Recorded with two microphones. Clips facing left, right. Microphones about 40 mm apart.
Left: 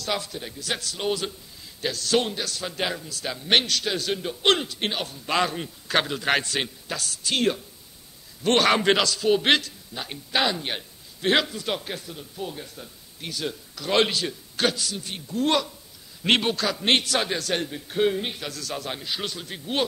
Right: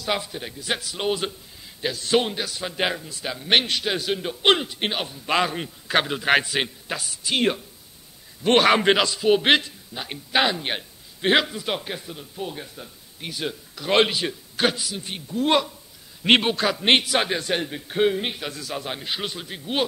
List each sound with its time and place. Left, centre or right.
0.0 s a man's voice: centre
3.6 s a man's voice: right
15.2 s a man's voice: centre
16.3 s a man's voice: right